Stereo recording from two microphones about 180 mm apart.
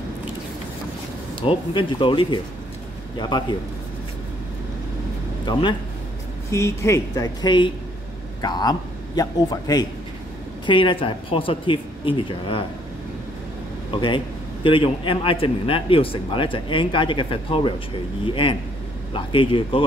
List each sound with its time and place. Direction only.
1.4 s a man's voice: 30° left (ahead or behind)
5.4 s speech: 25° left (ahead or behind)
6.5 s a man's voice: 15° left (ahead or behind)
13.9 s a man's voice: 30° left (ahead or behind)